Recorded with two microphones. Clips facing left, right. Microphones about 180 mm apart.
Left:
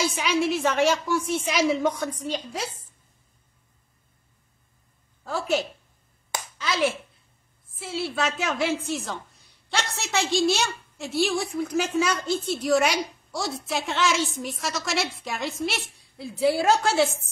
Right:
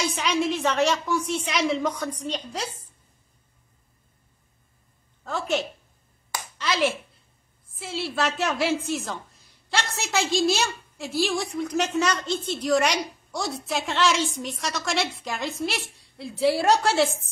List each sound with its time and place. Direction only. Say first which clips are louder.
0.0 s a woman's voice: left 1 dB; 5° left (ahead or behind)
5.2 s a woman's voice: left 1 dB; centre (ahead or behind)